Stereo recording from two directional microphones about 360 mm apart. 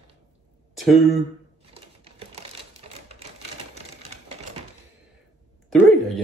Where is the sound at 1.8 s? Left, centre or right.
Centre.